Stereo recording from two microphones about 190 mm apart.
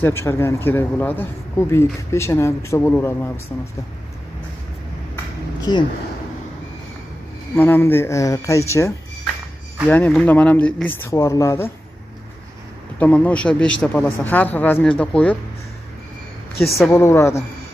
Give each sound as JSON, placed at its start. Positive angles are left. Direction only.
{"t": 0.0, "sound": "speech", "side_deg": 15}
{"t": 5.7, "sound": "speech", "side_deg": 20}
{"t": 7.5, "sound": "speech", "side_deg": 10}
{"t": 13.0, "sound": "speech", "side_deg": 5}
{"t": 16.7, "sound": "speech", "side_deg": 15}